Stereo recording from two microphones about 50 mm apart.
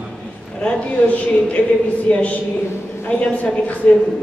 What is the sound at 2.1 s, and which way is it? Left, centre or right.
Speech, left.